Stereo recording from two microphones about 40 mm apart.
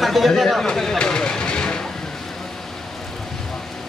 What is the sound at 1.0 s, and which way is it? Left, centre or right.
Vehicle, left.